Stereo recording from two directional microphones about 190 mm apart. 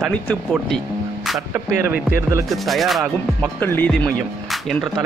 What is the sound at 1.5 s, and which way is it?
Music, 10° right (ahead or behind).